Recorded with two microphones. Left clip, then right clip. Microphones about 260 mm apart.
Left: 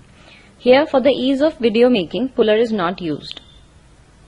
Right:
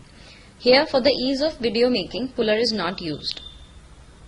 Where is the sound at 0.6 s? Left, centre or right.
Centre.